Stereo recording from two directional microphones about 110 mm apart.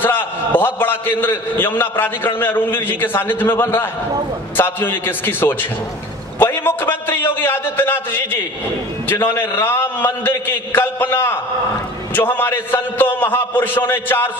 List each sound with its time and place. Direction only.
0.0 s a man's voice: 20° left (ahead or behind)
6.4 s a sound: 20° left (ahead or behind)
9.0 s a man's voice: 20° left (ahead or behind)